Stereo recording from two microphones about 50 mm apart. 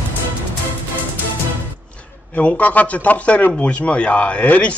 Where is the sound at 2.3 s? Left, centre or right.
Left.